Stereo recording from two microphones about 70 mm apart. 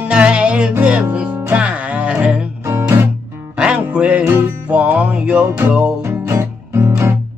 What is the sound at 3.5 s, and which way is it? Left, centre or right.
Music, centre.